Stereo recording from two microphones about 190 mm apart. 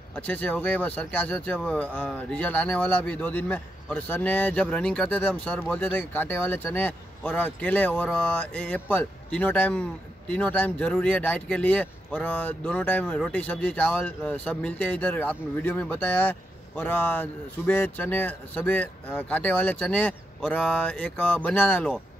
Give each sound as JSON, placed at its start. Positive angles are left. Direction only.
{"t": 0.1, "sound": "speech", "side_deg": 10}